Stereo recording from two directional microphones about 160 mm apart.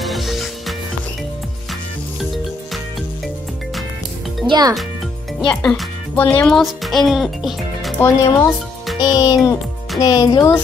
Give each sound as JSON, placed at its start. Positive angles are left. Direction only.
{"t": 0.0, "sound": "music", "side_deg": 0}
{"t": 2.1, "sound": "music", "side_deg": 0}
{"t": 4.5, "sound": "speech", "side_deg": -25}
{"t": 5.5, "sound": "speech", "side_deg": 5}
{"t": 8.0, "sound": "speech", "side_deg": 20}